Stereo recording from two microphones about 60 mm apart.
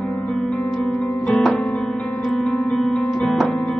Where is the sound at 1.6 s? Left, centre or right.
Centre.